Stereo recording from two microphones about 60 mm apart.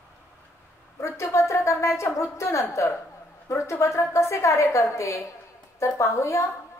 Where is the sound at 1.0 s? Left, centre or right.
Left.